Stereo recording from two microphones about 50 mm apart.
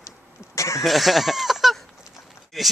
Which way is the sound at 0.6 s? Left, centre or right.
Left.